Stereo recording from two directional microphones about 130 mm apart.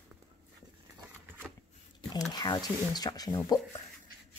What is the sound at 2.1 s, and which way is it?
Speech, 30° left (ahead or behind).